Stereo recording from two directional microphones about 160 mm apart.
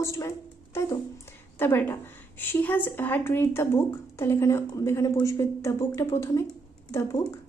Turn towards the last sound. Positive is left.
turn(degrees=20)  # may be behind; listen again after turning